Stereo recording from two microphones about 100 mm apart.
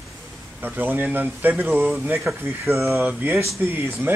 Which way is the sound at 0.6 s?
20° right (ahead or behind).